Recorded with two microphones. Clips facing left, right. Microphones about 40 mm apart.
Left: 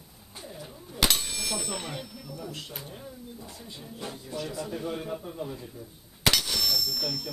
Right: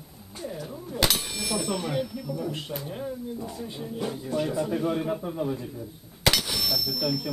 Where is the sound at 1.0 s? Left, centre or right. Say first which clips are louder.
Right 1 dB; centre.